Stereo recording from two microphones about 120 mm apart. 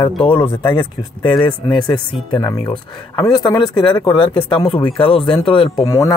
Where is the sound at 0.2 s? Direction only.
40° left (ahead or behind).